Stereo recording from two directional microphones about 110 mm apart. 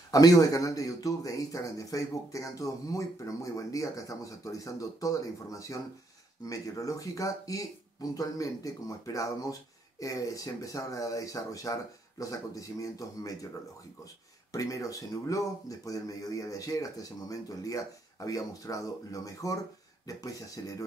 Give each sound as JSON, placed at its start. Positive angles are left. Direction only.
{"t": 0.1, "sound": "speech", "side_deg": 35}
{"t": 14.5, "sound": "speech", "side_deg": 30}